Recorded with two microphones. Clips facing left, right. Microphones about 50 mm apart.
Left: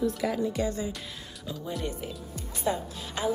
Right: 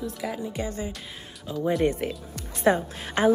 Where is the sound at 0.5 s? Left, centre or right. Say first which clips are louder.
Left 1 dB; right.